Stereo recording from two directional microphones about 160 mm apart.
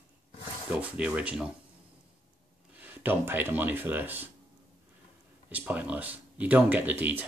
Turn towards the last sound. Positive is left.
turn(degrees=-10)  # may be behind; listen again after turning